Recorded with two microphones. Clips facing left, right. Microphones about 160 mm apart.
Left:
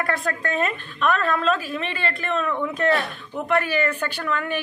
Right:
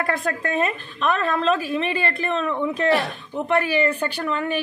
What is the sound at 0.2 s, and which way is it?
A woman's voice, 35° right (ahead or behind).